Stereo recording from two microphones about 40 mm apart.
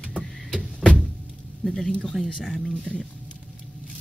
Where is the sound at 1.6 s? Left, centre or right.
Centre.